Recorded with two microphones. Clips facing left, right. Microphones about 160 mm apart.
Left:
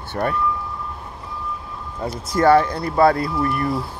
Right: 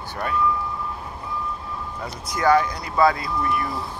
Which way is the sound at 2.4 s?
45° left (ahead or behind).